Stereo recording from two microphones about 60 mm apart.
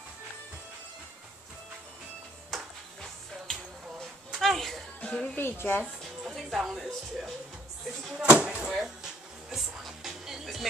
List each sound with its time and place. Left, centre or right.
2.5 s music: centre
4.0 s a sound: centre
5.0 s speech: left
5.4 s a woman's voice: left
6.3 s speech: centre
8.1 s speech: centre
8.6 s music: centre